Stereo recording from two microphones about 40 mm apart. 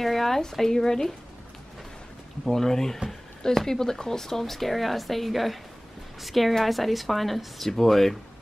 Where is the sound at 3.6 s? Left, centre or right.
Centre.